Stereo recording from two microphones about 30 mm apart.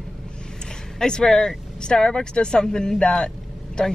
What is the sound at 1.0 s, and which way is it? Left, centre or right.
Speech, left.